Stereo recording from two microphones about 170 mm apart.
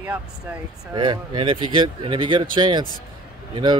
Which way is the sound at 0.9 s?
25° right (ahead or behind).